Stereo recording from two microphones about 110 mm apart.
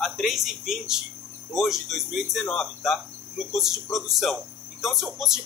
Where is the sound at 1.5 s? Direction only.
Centre (ahead or behind).